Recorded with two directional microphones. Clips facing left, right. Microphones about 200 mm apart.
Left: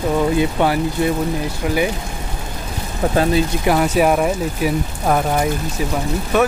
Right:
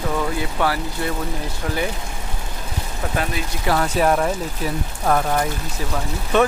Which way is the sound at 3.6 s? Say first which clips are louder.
Left 2 dB; 10° left (ahead or behind).